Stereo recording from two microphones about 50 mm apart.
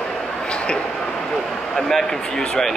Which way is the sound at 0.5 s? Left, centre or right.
Left.